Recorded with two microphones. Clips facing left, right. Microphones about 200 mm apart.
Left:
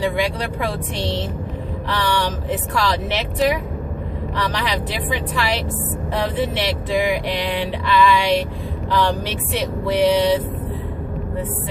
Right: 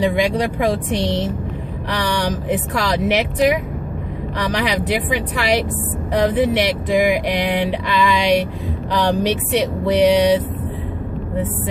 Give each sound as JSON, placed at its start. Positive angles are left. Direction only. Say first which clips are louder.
{"t": 0.0, "sound": "speech", "louder": "right 4 dB", "side_deg": -15}